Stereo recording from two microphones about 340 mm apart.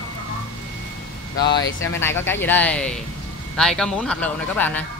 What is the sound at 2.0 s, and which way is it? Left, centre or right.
Speech, centre.